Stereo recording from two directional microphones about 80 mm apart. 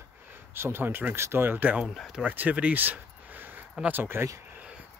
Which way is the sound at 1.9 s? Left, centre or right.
Centre.